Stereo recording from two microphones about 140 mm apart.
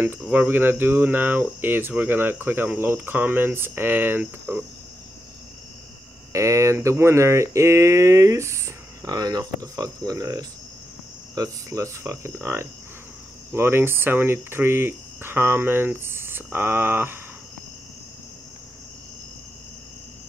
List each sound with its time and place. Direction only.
0.0 s speech: 15° right (ahead or behind)
6.3 s speech: 20° right (ahead or behind)